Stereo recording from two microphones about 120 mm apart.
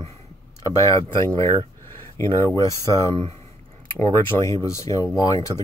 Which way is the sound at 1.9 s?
20° left (ahead or behind).